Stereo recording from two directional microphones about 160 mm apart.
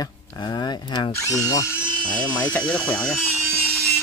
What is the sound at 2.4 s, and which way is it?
Speech, 10° left (ahead or behind).